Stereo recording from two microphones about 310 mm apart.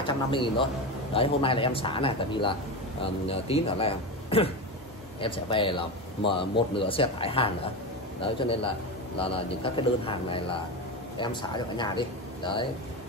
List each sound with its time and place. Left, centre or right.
0.0 s a man's voice: centre